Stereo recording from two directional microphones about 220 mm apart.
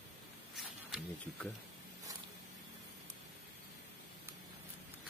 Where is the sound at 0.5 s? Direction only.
Centre (ahead or behind).